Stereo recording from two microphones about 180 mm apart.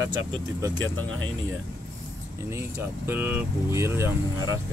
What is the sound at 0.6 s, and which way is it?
Speech, 20° right (ahead or behind).